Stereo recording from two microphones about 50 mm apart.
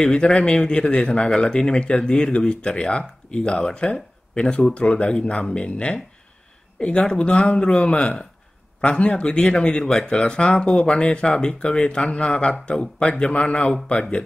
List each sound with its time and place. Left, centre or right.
0.1 s speech: centre